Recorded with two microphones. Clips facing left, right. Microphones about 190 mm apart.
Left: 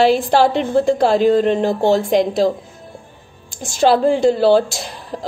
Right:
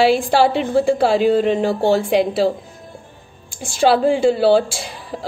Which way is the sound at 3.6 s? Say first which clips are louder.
Left 1 dB; 45° left (ahead or behind).